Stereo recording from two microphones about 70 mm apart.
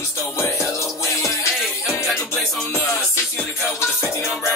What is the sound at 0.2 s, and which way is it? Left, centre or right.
Music, left.